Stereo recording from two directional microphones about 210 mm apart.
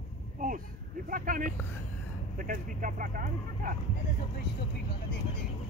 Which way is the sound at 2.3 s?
40° right (ahead or behind).